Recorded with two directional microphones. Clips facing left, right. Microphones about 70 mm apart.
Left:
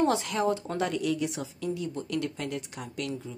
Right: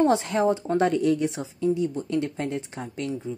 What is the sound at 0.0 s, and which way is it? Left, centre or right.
Speech, right.